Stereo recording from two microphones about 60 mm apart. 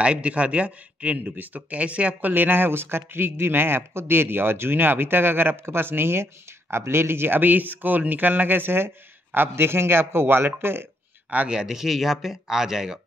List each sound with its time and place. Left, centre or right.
0.0 s speech: centre
2.3 s speech: right
11.4 s speech: centre